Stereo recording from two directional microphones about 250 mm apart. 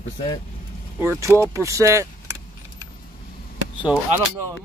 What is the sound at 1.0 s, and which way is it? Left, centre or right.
Speech, centre.